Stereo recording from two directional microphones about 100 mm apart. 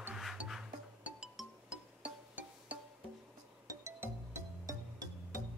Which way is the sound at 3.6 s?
30° right (ahead or behind).